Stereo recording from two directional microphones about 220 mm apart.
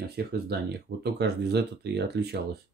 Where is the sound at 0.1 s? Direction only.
50° right (ahead or behind).